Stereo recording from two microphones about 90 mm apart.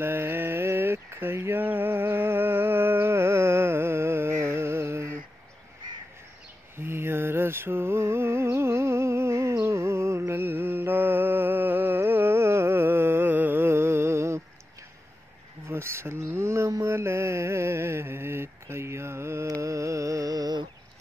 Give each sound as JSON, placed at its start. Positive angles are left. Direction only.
{"t": 0.0, "sound": "mantra", "side_deg": -25}
{"t": 6.8, "sound": "mantra", "side_deg": -25}
{"t": 15.6, "sound": "speech", "side_deg": -30}
{"t": 16.8, "sound": "mantra", "side_deg": -30}
{"t": 19.6, "sound": "carnatic music", "side_deg": -35}